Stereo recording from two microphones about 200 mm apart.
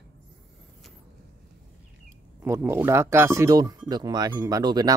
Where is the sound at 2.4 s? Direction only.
10° right (ahead or behind).